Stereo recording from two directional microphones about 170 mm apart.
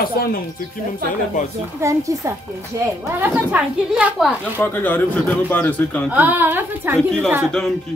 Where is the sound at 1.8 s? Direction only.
20° right (ahead or behind).